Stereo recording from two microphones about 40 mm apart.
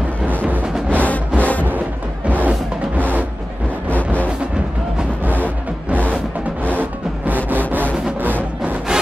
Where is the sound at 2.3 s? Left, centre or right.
Right.